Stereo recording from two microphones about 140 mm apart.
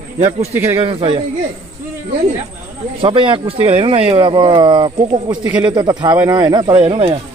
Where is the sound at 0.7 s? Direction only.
40° right (ahead or behind).